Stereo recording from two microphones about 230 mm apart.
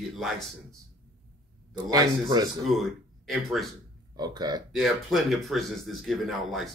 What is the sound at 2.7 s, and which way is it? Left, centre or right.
Speech, centre.